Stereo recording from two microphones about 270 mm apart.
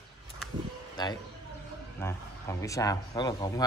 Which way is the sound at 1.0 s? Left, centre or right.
Centre.